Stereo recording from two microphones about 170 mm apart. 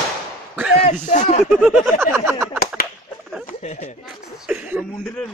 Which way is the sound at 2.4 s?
5° right (ahead or behind).